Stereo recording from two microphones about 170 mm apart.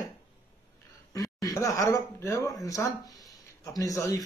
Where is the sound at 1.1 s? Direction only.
20° left (ahead or behind).